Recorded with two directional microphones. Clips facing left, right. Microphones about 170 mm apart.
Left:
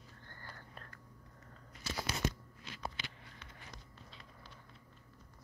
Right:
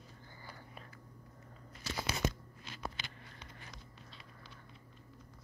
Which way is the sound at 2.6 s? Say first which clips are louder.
Even; 30° right (ahead or behind).